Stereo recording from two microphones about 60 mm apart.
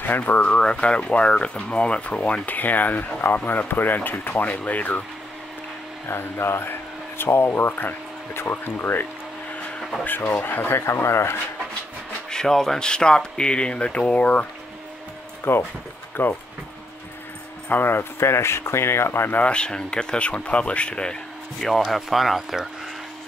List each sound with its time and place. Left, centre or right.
0.0 s speech: left
6.0 s speech: left
10.0 s speech: left
12.3 s speech: centre
15.5 s speech: left
17.6 s speech: left
19.3 s speech: centre